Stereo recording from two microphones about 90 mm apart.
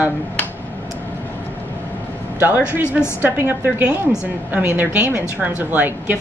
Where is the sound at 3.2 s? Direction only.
25° right (ahead or behind).